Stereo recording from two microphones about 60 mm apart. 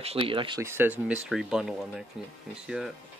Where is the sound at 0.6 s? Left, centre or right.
Right.